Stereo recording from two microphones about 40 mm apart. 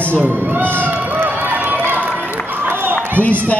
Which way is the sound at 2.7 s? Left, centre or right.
Right.